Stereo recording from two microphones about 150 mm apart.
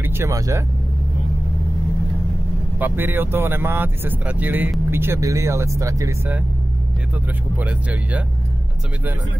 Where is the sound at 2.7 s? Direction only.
15° right (ahead or behind).